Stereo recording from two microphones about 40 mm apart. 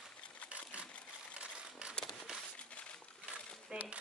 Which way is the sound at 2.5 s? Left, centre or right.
Left.